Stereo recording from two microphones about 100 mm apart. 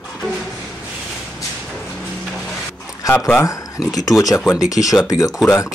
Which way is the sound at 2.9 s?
25° left (ahead or behind).